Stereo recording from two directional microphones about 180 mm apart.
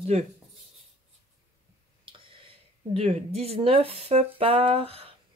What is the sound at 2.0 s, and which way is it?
Speech, 30° right (ahead or behind).